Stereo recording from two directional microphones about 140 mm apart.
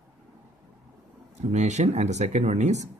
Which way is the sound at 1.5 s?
55° right (ahead or behind).